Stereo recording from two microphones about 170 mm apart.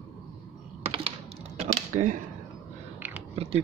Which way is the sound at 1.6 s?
50° right (ahead or behind).